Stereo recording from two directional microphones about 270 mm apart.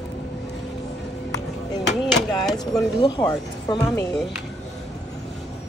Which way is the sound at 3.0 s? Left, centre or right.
Centre.